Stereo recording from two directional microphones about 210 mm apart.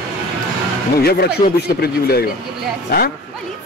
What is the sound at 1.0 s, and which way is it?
A man's voice, 50° left (ahead or behind).